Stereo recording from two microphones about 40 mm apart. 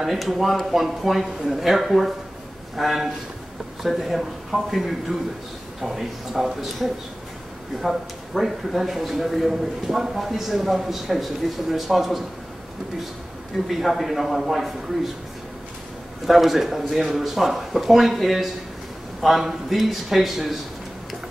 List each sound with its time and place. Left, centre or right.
0.0 s speech: centre
13.7 s speech: centre
16.3 s speech: centre